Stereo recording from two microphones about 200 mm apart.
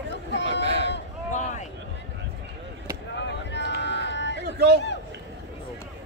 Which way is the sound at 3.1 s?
60° left (ahead or behind).